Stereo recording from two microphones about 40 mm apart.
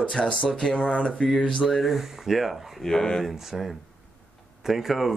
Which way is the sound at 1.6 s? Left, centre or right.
Centre.